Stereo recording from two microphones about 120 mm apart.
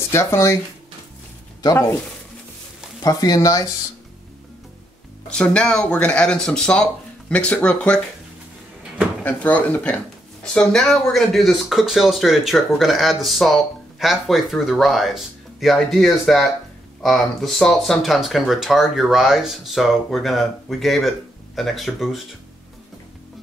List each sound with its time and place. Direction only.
0.1 s speech: 25° left (ahead or behind)
3.0 s speech: 30° left (ahead or behind)
5.3 s speech: 5° left (ahead or behind)
9.2 s speech: 10° left (ahead or behind)